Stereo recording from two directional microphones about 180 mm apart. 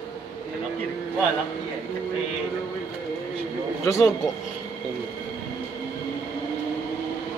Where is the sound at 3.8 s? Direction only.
15° left (ahead or behind).